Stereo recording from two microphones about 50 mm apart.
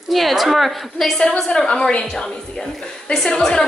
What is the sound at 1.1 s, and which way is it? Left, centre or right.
A woman's voice, centre.